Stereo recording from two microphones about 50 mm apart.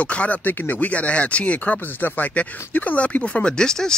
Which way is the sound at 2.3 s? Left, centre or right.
Left.